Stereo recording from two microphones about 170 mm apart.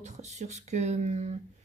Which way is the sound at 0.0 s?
40° right (ahead or behind).